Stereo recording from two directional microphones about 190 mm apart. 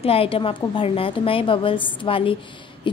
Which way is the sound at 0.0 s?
30° left (ahead or behind).